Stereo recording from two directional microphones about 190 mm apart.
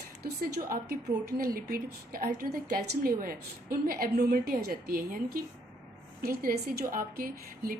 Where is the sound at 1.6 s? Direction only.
50° right (ahead or behind).